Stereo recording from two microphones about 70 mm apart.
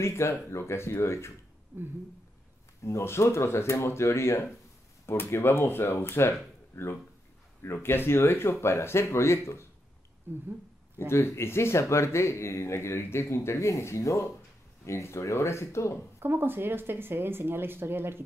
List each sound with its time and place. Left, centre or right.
0.0 s speech: left
2.8 s speech: left
10.3 s speech: right
11.1 s speech: left
16.2 s speech: right